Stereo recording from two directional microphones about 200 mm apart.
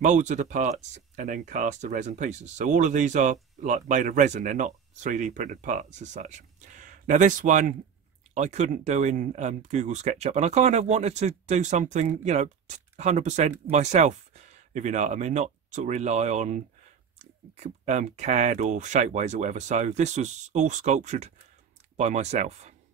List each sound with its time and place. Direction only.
0.0 s speech: 35° right (ahead or behind)